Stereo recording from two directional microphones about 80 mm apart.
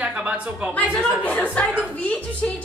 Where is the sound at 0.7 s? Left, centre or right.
Centre.